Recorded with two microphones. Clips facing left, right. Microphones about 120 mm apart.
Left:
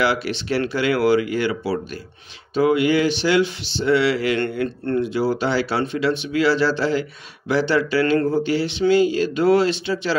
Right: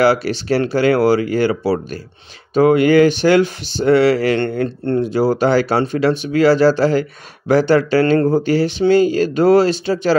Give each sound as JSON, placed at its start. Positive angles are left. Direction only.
{"t": 0.0, "sound": "speech", "side_deg": -40}
{"t": 4.6, "sound": "speech", "side_deg": -30}
{"t": 5.0, "sound": "speech", "side_deg": -40}